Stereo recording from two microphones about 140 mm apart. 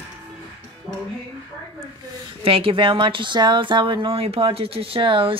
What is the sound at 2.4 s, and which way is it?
Speech, 40° right (ahead or behind).